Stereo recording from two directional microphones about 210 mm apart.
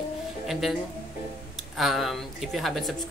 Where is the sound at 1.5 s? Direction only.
Centre (ahead or behind).